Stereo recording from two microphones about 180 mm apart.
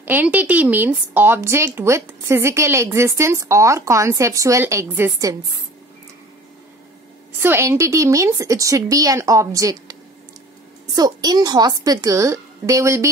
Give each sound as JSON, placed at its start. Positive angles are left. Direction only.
{"t": 0.0, "sound": "a woman's voice", "side_deg": -10}
{"t": 7.3, "sound": "a woman's voice", "side_deg": -15}